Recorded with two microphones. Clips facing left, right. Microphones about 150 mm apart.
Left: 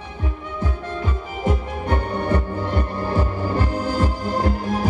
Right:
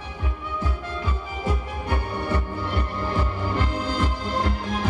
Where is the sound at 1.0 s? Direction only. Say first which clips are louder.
Left 5 dB; 50° left (ahead or behind).